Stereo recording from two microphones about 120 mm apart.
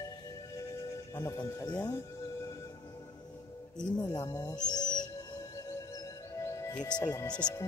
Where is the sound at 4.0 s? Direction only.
35° left (ahead or behind).